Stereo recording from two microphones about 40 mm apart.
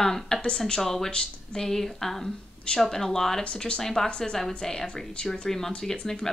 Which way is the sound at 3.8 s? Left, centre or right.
Centre.